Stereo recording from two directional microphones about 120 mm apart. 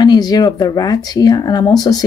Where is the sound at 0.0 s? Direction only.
35° left (ahead or behind).